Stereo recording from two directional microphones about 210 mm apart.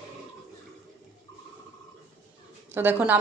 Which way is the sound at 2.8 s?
10° right (ahead or behind).